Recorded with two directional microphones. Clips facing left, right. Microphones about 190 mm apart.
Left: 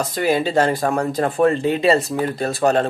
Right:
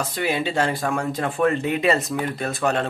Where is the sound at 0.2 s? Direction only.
40° left (ahead or behind).